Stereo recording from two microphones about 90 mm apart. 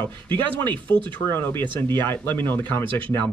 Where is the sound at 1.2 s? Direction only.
25° left (ahead or behind).